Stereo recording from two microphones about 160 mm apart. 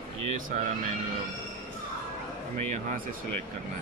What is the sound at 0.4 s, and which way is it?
Speech, 55° right (ahead or behind).